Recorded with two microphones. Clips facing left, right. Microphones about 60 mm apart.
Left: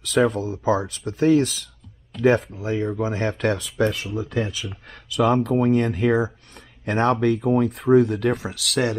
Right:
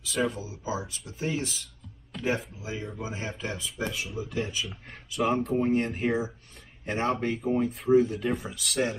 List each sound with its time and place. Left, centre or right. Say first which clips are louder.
0.0 s speech: left 9 dB; left
2.6 s speech: left 11 dB; left
4.3 s speech: left 5 dB; left
6.8 s speech: left 8 dB; left